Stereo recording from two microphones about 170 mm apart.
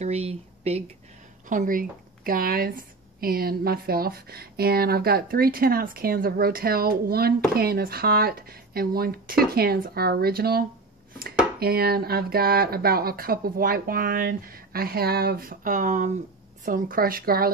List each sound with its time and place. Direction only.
0.0 s speech: 40° right (ahead or behind)
1.5 s speech: 50° right (ahead or behind)
11.6 s speech: 65° right (ahead or behind)